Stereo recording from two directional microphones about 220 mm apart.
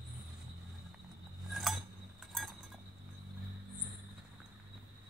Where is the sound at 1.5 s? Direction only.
Centre (ahead or behind).